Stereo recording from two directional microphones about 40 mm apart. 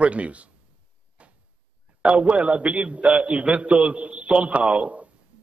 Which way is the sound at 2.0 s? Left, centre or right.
Right.